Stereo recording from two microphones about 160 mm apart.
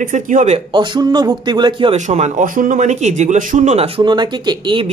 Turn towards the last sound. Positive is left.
turn(degrees=-30)  # may be behind; listen again after turning